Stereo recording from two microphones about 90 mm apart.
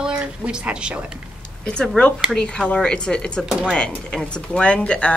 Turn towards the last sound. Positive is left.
turn(degrees=10)  # may be behind; listen again after turning